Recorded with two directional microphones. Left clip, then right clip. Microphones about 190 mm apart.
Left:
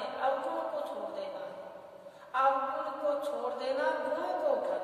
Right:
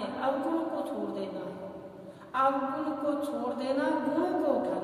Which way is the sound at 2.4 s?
10° right (ahead or behind).